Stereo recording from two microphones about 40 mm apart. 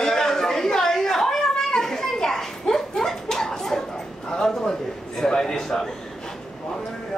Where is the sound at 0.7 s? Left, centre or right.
Centre.